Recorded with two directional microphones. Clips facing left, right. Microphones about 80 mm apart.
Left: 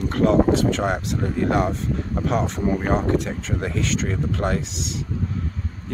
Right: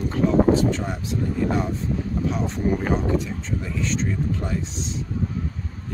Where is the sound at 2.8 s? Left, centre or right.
Left.